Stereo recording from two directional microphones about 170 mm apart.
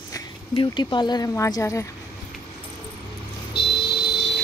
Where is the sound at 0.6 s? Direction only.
25° left (ahead or behind).